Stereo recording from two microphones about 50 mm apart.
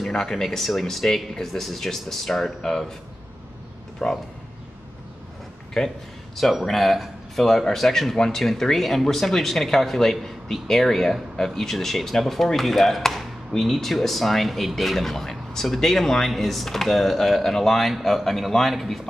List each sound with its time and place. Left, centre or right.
0.0 s speech: centre
4.0 s speech: centre
5.8 s speech: centre
6.3 s speech: centre